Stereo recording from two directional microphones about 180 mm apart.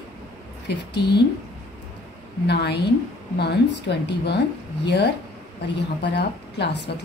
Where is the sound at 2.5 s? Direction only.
65° left (ahead or behind).